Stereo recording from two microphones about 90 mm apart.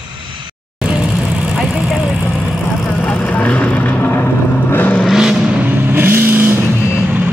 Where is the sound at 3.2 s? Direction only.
15° left (ahead or behind).